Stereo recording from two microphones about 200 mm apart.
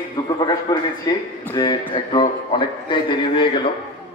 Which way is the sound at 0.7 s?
15° left (ahead or behind).